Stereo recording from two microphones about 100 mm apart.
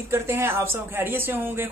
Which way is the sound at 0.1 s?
25° right (ahead or behind).